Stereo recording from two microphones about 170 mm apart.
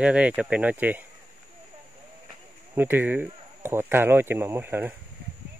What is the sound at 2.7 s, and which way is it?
Speech, 10° right (ahead or behind).